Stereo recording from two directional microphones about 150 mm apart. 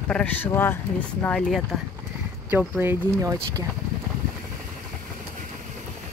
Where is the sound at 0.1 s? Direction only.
10° left (ahead or behind).